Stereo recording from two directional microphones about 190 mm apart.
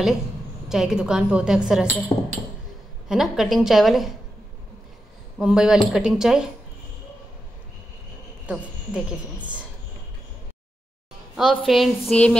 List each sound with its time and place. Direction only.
0.7 s a woman's voice: 5° right (ahead or behind)
2.1 s speech: 20° left (ahead or behind)
3.1 s a woman's voice: centre (ahead or behind)
5.4 s a woman's voice: 5° right (ahead or behind)
8.5 s a woman's voice: 5° right (ahead or behind)
11.3 s a woman's voice: centre (ahead or behind)